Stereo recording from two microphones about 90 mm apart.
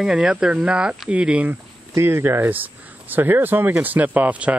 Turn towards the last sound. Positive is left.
turn(degrees=-15)  # may be behind; listen again after turning